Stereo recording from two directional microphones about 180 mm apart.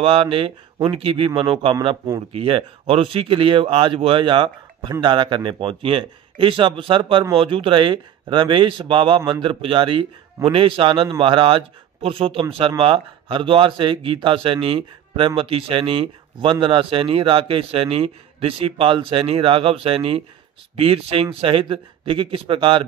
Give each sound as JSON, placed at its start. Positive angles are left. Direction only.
{"t": 0.0, "sound": "speech", "side_deg": -30}